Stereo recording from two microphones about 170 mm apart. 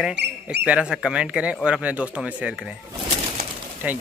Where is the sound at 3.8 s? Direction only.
5° right (ahead or behind).